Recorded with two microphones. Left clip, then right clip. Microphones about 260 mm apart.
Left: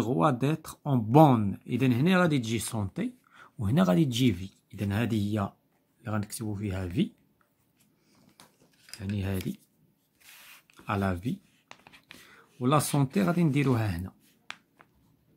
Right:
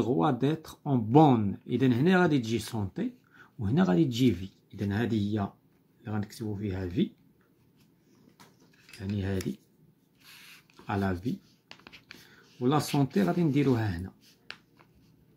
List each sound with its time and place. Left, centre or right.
0.0 s speech: left
9.0 s speech: left
10.9 s speech: left
11.3 s writing: centre
12.3 s a sound: left
12.9 s speech: left